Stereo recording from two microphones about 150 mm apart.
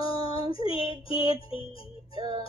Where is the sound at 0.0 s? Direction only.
35° left (ahead or behind).